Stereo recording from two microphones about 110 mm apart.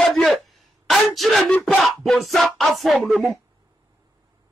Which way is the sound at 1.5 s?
15° left (ahead or behind).